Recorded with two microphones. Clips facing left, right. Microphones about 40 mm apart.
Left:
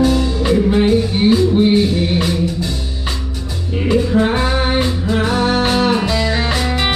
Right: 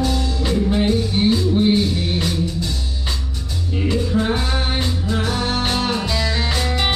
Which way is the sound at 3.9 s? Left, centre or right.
Left.